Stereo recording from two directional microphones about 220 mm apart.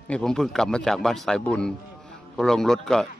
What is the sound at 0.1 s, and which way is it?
Speech, centre (ahead or behind).